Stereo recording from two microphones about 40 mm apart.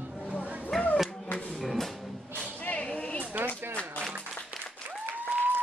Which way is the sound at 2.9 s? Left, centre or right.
Left.